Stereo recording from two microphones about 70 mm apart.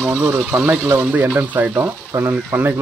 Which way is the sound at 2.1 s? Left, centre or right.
Right.